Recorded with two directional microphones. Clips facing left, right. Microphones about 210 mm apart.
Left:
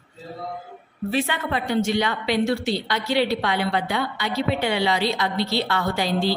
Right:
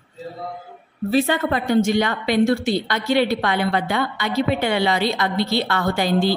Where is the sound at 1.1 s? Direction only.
40° right (ahead or behind).